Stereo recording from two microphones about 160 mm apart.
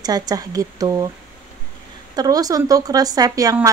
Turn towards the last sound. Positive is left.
turn(degrees=-20)  # may be behind; listen again after turning